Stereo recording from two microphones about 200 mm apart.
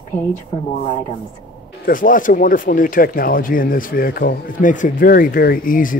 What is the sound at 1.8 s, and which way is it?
Speech, 40° left (ahead or behind).